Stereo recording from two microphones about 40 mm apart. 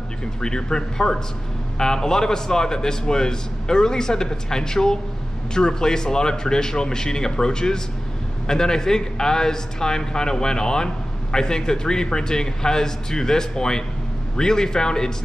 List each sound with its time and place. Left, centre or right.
0.4 s a man's voice: centre